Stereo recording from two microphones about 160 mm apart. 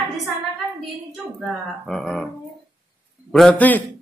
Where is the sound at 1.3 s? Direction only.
Centre (ahead or behind).